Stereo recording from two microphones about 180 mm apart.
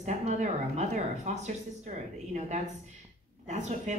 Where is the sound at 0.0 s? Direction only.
40° right (ahead or behind).